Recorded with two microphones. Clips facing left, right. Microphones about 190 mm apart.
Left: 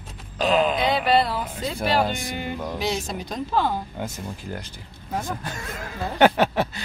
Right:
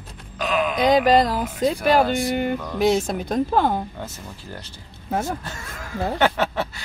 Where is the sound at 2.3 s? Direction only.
50° right (ahead or behind).